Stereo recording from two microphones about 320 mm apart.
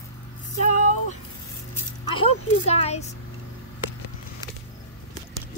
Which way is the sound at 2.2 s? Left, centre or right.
Centre.